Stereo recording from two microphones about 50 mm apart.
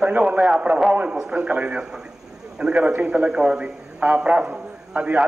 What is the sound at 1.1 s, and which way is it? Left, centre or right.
Speech, centre.